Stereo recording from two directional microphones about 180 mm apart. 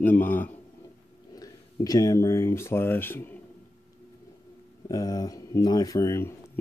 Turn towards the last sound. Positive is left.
turn(degrees=15)  # may be behind; listen again after turning